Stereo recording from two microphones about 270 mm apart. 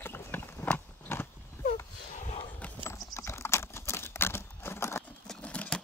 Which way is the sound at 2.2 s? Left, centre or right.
Left.